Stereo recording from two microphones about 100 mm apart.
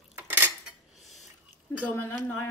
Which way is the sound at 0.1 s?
25° right (ahead or behind).